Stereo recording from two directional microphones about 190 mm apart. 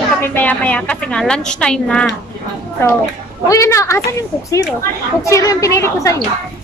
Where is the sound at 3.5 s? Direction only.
15° left (ahead or behind).